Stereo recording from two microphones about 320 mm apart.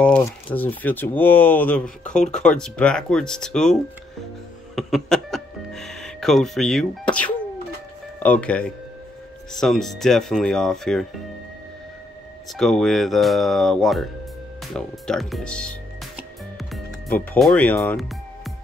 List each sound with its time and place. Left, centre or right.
0.0 s speech: centre
4.7 s music: centre
8.2 s speech: centre
12.4 s speech: centre
16.5 s music: centre